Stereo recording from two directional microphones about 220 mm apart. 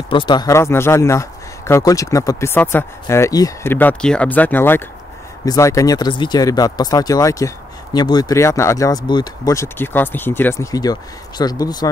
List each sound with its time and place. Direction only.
0.1 s speech: 20° left (ahead or behind)